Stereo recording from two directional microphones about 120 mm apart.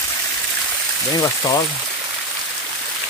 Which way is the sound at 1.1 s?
30° left (ahead or behind).